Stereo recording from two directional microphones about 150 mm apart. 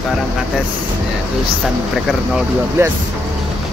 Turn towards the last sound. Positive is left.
turn(degrees=-15)  # may be behind; listen again after turning